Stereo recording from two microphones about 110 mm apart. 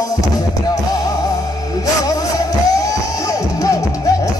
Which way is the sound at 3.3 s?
30° left (ahead or behind).